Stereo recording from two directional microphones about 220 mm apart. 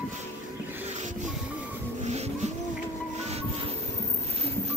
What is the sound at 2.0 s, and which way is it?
Music, 30° right (ahead or behind).